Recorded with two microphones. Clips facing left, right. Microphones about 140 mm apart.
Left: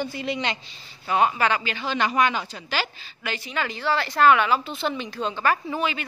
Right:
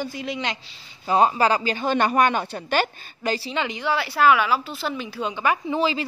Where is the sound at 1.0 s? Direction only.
35° right (ahead or behind); by 2.9 s 55° right (ahead or behind).